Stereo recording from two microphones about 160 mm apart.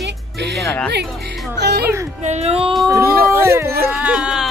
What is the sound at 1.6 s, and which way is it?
Speech, 90° right.